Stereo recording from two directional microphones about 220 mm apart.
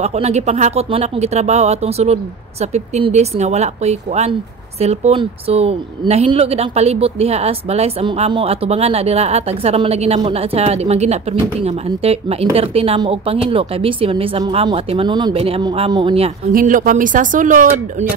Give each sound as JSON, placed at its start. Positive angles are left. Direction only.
{"t": 0.0, "sound": "speech", "side_deg": -30}
{"t": 16.5, "sound": "speech", "side_deg": -35}